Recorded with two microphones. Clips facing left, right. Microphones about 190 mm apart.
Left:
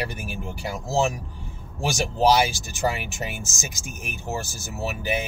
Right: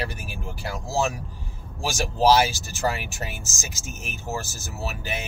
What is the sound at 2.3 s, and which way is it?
Speech, 15° left (ahead or behind).